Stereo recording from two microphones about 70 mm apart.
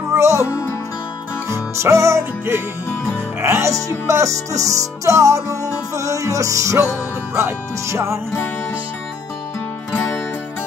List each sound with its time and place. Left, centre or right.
0.1 s music: right
1.5 s music: right